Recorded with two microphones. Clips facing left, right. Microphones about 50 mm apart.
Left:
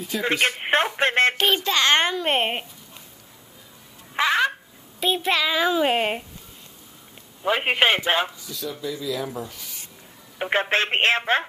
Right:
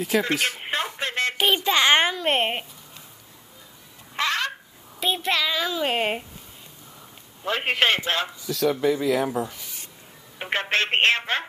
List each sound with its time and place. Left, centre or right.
0.3 s radio: left
1.4 s a child's voice: centre
2.1 s a child's voice: centre
4.1 s a sound: centre
5.0 s a child's voice: centre
5.6 s speech: centre
5.9 s a child's voice: centre
7.4 s speech: centre
8.5 s speech: right
9.3 s speech: right
10.5 s speech: left